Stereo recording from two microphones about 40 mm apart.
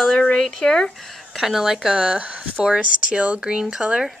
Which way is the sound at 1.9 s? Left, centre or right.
Right.